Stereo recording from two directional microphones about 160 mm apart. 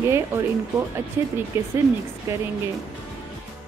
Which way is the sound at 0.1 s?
15° right (ahead or behind).